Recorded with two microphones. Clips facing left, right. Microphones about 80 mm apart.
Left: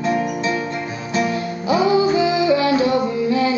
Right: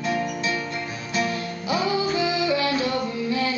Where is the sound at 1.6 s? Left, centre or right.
Centre.